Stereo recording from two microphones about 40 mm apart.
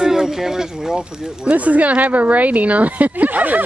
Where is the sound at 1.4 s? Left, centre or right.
Right.